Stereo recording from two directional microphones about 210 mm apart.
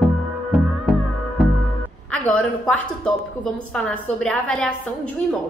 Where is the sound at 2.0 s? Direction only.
5° left (ahead or behind).